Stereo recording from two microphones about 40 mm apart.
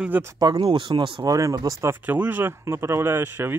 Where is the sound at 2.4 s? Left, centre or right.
Right.